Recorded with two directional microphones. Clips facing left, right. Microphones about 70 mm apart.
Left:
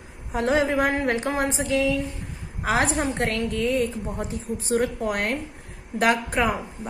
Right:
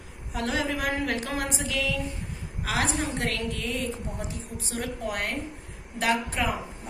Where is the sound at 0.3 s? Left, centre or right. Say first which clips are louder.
Left 7 dB; left.